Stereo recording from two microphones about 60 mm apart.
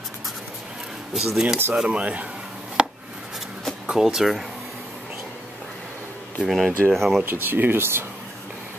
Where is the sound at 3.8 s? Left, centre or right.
Centre.